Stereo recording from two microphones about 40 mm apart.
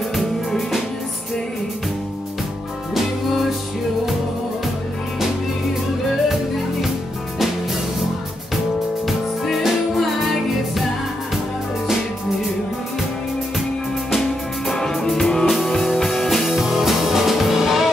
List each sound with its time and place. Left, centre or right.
0.1 s music: centre
9.0 s music: centre
14.7 s music: centre